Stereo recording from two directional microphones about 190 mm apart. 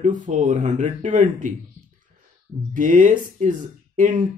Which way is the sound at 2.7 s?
45° right (ahead or behind).